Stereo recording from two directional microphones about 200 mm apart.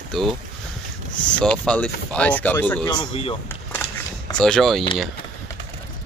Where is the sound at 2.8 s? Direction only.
25° left (ahead or behind).